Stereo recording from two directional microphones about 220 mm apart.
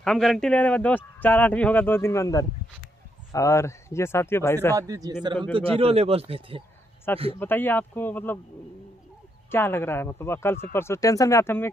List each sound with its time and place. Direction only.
0.0 s speech: centre (ahead or behind)
4.7 s a man's voice: 15° right (ahead or behind)
7.3 s speech: 10° left (ahead or behind)
9.5 s speech: 10° left (ahead or behind)